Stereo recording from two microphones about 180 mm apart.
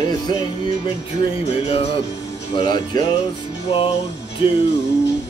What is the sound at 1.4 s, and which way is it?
Music, 35° left (ahead or behind).